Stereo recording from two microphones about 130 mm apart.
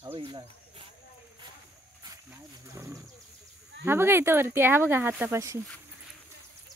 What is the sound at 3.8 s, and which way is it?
Speech, 20° right (ahead or behind).